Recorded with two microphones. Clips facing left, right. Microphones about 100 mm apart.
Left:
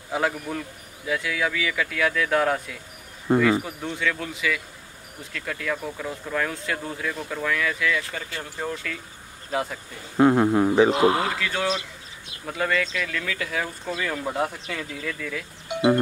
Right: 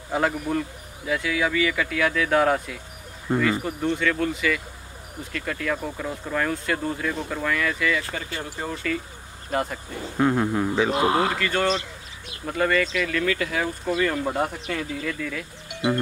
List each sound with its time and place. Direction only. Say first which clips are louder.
0.1 s speech: right 2 dB; centre (ahead or behind)
10.1 s speech: left 4 dB; 15° left (ahead or behind)
11.2 s speech: right 3 dB; centre (ahead or behind)
15.7 s music: left 4 dB; 25° left (ahead or behind)